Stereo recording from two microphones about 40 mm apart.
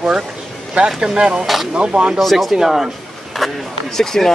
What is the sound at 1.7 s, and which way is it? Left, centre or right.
Speech, right.